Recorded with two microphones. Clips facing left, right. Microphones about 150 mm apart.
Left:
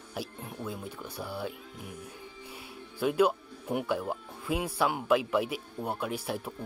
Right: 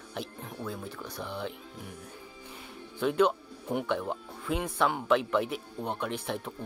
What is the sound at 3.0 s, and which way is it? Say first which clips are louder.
Speech: even; 5° left (ahead or behind).